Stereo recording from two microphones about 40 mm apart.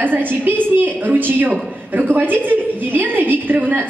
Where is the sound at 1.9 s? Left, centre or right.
Right.